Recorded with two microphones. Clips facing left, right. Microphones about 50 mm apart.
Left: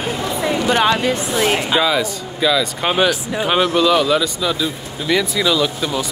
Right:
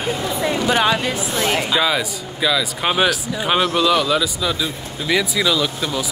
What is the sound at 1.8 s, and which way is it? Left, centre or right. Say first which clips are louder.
Speech: left 2 dB; centre.